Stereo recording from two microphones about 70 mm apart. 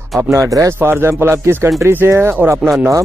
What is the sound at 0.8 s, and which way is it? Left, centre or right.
Speech, right.